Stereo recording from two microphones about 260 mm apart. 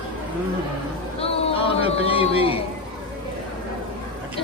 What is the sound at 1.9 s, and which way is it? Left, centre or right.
Speech, left.